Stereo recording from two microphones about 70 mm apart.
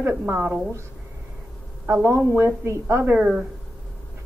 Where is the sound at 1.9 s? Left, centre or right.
Right.